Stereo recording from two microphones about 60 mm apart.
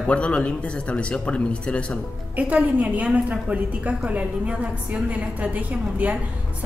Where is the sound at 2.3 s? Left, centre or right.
Right.